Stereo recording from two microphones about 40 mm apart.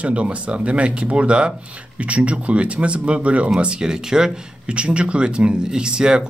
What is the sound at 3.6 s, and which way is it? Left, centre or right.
Speech, right.